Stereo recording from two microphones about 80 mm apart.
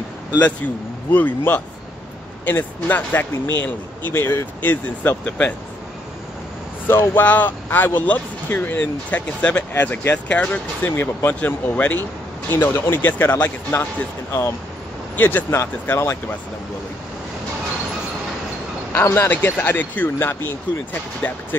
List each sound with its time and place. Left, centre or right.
1.1 s speech: left
6.9 s speech: left
11.0 s speech: left
15.1 s speech: left
18.9 s speech: left